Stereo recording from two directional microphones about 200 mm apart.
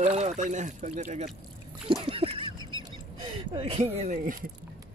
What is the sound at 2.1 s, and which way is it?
Duck, 25° right (ahead or behind).